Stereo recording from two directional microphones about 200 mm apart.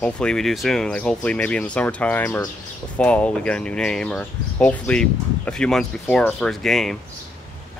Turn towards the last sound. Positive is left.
turn(degrees=0)  # may be behind; listen again after turning